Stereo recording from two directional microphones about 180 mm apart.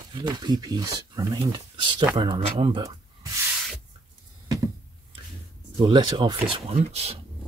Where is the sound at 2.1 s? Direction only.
25° right (ahead or behind).